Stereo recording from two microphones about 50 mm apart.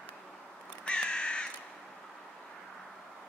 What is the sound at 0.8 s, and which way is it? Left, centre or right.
Crow, centre.